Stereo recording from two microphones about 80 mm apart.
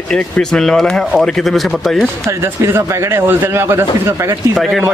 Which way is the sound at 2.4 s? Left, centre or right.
Right.